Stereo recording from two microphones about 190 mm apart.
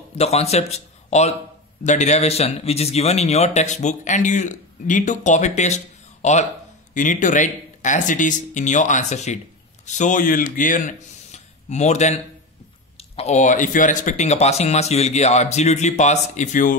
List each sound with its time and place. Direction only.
0.2 s a man's voice: 35° left (ahead or behind)